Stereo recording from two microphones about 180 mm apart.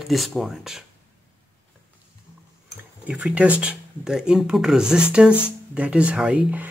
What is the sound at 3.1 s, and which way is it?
Speech, 5° right (ahead or behind).